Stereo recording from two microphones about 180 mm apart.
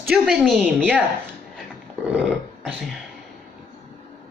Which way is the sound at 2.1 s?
5° right (ahead or behind).